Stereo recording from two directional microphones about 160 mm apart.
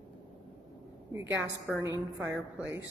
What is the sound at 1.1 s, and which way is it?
Speech, 15° right (ahead or behind).